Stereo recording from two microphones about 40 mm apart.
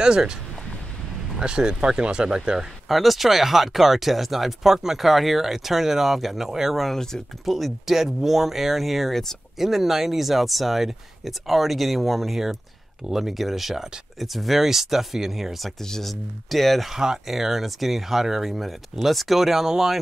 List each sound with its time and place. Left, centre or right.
1.4 s speech: centre
2.9 s speech: centre
6.8 s speech: centre
7.4 s speech: centre
9.6 s speech: centre
15.8 s speech: centre
16.9 s speech: centre